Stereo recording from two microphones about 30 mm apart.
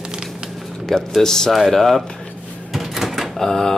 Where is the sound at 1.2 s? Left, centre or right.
Centre.